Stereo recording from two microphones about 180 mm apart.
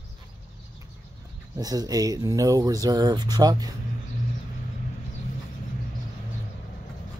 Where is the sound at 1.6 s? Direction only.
20° right (ahead or behind).